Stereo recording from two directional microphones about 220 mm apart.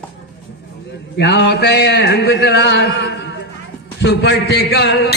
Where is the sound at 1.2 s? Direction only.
50° left (ahead or behind).